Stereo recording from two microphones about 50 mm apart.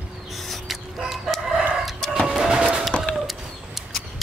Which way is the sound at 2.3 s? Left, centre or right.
Centre.